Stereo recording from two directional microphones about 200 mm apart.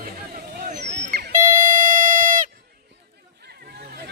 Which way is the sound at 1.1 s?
45° right (ahead or behind).